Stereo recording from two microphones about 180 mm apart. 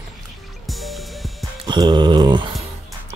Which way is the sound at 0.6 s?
Centre (ahead or behind).